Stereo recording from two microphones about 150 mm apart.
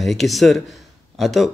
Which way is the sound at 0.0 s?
Centre (ahead or behind).